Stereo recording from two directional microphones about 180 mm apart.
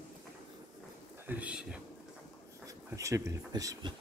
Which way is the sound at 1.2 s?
10° right (ahead or behind).